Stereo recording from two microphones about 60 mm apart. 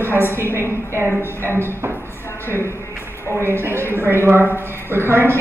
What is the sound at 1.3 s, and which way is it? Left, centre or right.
Speech, right.